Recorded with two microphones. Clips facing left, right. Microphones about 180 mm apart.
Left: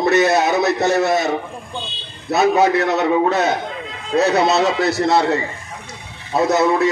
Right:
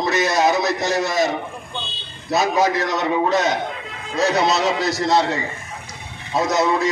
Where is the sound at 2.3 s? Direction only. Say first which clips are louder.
Left 4 dB; 65° left (ahead or behind).